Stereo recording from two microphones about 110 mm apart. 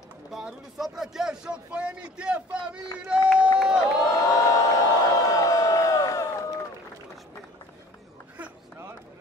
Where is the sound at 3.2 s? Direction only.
10° right (ahead or behind).